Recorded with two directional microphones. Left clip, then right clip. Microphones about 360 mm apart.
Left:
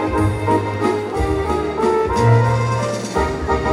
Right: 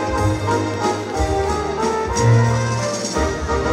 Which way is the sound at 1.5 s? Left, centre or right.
Left.